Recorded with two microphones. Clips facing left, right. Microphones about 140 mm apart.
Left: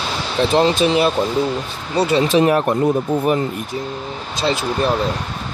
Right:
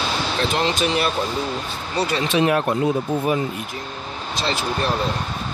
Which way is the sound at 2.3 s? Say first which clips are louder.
Left 4 dB; 40° left (ahead or behind).